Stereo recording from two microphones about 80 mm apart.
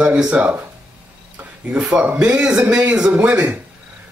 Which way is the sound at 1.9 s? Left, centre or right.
Centre.